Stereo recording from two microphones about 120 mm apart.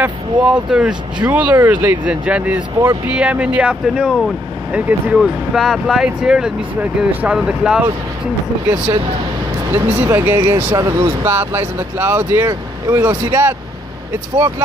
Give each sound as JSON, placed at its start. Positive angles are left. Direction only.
{"t": 0.0, "sound": "speech", "side_deg": -10}
{"t": 9.7, "sound": "speech", "side_deg": -15}
{"t": 10.8, "sound": "speech", "side_deg": -30}
{"t": 11.2, "sound": "speech", "side_deg": -20}